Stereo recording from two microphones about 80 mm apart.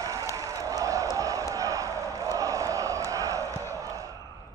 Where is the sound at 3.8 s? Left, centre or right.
Right.